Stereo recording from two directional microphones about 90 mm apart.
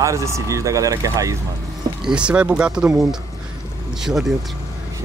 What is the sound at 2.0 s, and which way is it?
Speech, 10° right (ahead or behind).